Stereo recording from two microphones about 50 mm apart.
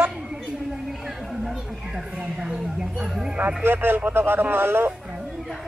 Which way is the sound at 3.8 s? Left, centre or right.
Right.